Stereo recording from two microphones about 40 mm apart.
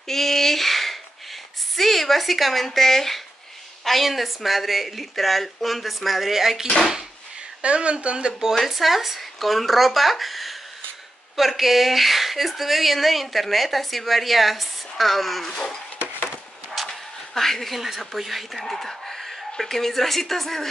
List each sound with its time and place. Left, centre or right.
0.0 s a sound: centre
1.8 s a woman's voice: centre
7.6 s a woman's voice: right
8.5 s speech: centre
15.5 s a sound: centre
17.7 s speech: centre